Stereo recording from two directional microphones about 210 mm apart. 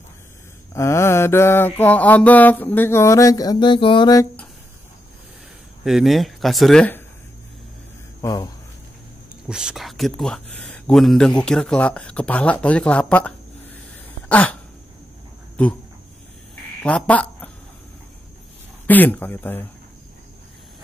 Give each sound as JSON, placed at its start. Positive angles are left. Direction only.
{"t": 0.7, "sound": "mantra", "side_deg": 15}
{"t": 5.9, "sound": "speech", "side_deg": 0}
{"t": 8.2, "sound": "speech", "side_deg": 15}
{"t": 9.5, "sound": "speech", "side_deg": -5}
{"t": 14.3, "sound": "throat clearing", "side_deg": 5}
{"t": 16.8, "sound": "speech", "side_deg": 5}
{"t": 18.9, "sound": "mantra", "side_deg": 10}